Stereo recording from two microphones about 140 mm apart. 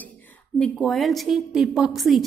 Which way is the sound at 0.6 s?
Centre (ahead or behind).